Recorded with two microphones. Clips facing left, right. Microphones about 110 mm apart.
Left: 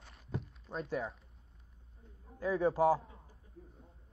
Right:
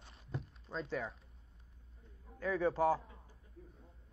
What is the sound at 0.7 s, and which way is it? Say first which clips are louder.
Speech: left 1 dB; 5° right (ahead or behind).